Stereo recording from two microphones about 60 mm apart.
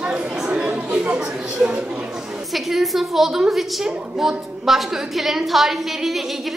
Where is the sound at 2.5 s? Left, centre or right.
Centre.